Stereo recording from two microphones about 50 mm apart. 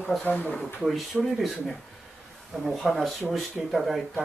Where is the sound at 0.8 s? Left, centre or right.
Centre.